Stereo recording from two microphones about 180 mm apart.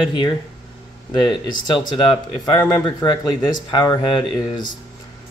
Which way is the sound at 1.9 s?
25° left (ahead or behind).